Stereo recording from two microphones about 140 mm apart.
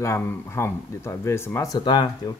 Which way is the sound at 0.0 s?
20° left (ahead or behind).